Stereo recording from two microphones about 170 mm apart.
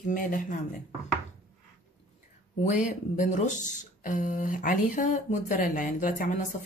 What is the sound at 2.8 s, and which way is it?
Speech, 45° left (ahead or behind).